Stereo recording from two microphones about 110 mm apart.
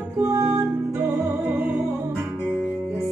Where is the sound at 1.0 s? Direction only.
10° right (ahead or behind).